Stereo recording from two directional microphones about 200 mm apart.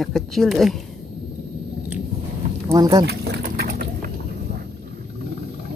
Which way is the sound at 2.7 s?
20° right (ahead or behind).